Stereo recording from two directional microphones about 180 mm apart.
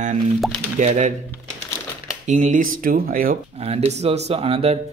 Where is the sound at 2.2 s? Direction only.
45° right (ahead or behind).